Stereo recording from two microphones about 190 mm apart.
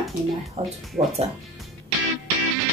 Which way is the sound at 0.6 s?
30° right (ahead or behind).